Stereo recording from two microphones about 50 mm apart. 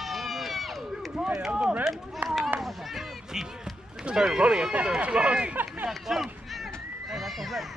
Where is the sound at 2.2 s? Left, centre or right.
Right.